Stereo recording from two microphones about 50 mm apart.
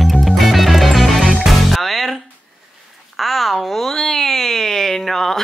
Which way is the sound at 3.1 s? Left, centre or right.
Centre.